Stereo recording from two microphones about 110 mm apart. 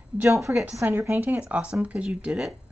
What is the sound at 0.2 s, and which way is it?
A woman's voice, 25° right (ahead or behind).